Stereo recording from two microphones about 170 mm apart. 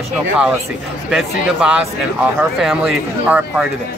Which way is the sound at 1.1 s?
5° right (ahead or behind).